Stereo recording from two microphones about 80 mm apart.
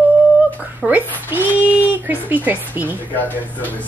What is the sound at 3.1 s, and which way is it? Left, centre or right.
Speech, left.